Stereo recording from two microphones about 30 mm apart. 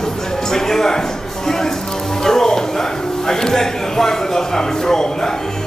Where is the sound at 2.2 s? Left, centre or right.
Centre.